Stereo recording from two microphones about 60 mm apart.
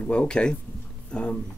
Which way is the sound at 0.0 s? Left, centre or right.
Centre.